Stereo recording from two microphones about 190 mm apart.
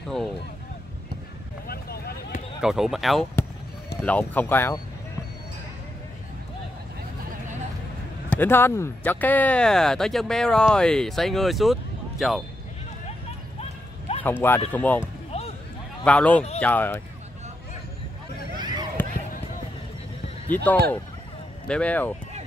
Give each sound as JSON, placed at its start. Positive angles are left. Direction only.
{"t": 1.7, "sound": "a sound", "side_deg": 55}
{"t": 2.6, "sound": "speech", "side_deg": 0}
{"t": 8.3, "sound": "speech", "side_deg": 10}
{"t": 13.6, "sound": "clip-clop", "side_deg": 35}
{"t": 14.2, "sound": "speech", "side_deg": 10}
{"t": 15.3, "sound": "basketball bounce", "side_deg": 30}
{"t": 16.0, "sound": "speech", "side_deg": 5}
{"t": 19.0, "sound": "basketball bounce", "side_deg": 10}
{"t": 20.4, "sound": "speech", "side_deg": 10}